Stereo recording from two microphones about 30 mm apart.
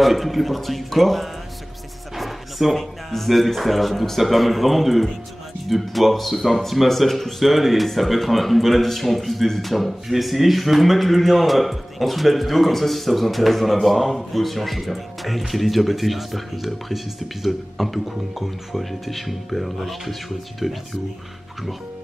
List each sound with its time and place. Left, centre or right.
0.0 s speech: centre
2.1 s music: centre
3.3 s speech: centre